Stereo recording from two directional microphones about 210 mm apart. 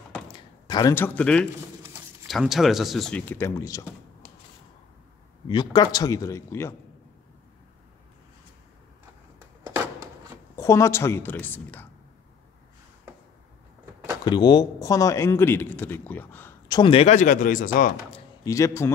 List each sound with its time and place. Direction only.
0.4 s speech: 20° left (ahead or behind)
5.5 s a man's voice: 20° left (ahead or behind)
9.6 s a sound: 15° right (ahead or behind)
10.5 s speech: 15° left (ahead or behind)
14.2 s a man's voice: 20° left (ahead or behind); by 18.2 s 40° left (ahead or behind)
18.4 s a man's voice: 15° left (ahead or behind)